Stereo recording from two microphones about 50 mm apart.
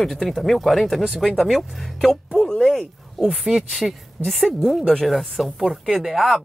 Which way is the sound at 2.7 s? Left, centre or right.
Centre.